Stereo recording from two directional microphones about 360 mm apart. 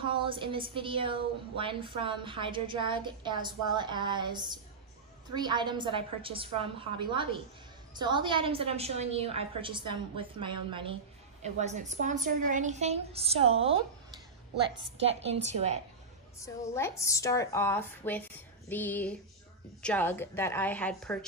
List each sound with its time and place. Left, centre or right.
0.0 s a woman's voice: centre
16.3 s a woman's voice: centre